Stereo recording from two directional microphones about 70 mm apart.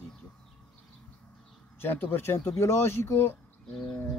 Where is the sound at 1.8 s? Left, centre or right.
Left.